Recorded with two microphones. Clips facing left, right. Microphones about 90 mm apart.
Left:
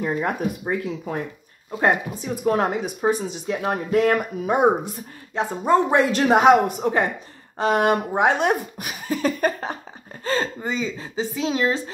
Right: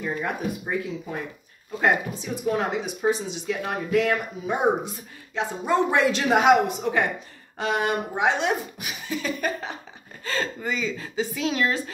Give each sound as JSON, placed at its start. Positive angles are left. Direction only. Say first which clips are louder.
{"t": 0.0, "sound": "speech", "louder": "left 4 dB", "side_deg": 45}
{"t": 5.3, "sound": "a woman's voice", "louder": "left 5 dB", "side_deg": 40}